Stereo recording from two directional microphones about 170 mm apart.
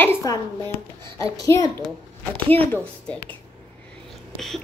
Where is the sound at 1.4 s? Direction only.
20° left (ahead or behind).